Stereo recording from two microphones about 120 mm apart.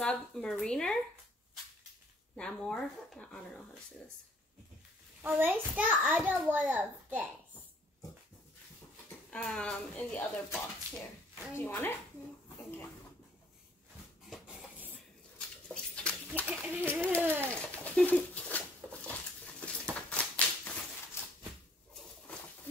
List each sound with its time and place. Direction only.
0.0 s speech: 5° left (ahead or behind)
2.3 s speech: 5° left (ahead or behind)
5.2 s a child's voice: 15° right (ahead or behind)
9.3 s speech: 10° left (ahead or behind)
14.5 s dishes: 10° right (ahead or behind)
15.3 s rodents: 10° left (ahead or behind)
16.4 s chicken: 15° right (ahead or behind)
17.2 s a child's voice: 15° right (ahead or behind)
17.5 s bird: 10° left (ahead or behind)
17.8 s a sound: 10° left (ahead or behind)